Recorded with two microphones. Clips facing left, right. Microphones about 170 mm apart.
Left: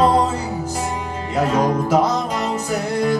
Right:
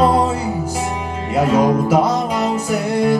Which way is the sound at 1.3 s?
10° right (ahead or behind).